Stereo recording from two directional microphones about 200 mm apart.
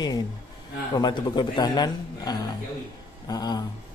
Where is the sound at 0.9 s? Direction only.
20° left (ahead or behind).